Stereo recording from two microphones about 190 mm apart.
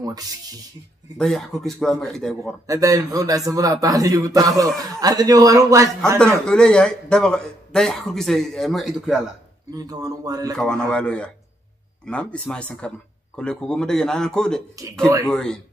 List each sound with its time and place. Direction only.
1.1 s a man's voice: centre (ahead or behind)
2.6 s speech: 20° right (ahead or behind)
6.1 s a man's voice: 5° left (ahead or behind)
9.7 s speech: 20° right (ahead or behind)
10.6 s a man's voice: 5° left (ahead or behind)